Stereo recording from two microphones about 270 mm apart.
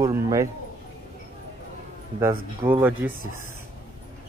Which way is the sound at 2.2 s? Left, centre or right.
Centre.